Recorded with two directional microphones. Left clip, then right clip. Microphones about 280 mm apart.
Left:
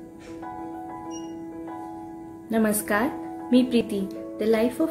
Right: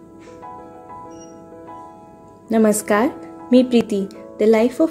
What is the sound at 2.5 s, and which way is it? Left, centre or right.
Speech, right.